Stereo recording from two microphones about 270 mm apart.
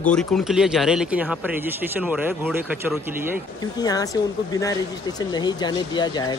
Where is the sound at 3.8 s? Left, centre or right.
Centre.